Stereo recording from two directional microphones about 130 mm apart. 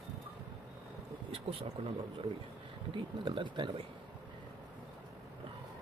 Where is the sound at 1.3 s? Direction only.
45° right (ahead or behind).